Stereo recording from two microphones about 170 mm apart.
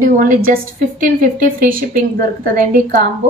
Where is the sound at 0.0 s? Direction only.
50° right (ahead or behind).